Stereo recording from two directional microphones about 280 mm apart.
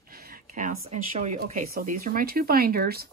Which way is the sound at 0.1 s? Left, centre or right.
Right.